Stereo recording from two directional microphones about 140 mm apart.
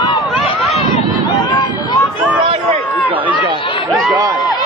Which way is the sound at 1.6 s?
30° left (ahead or behind).